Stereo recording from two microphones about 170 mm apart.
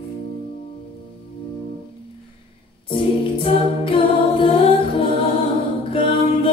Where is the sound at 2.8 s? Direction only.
30° left (ahead or behind).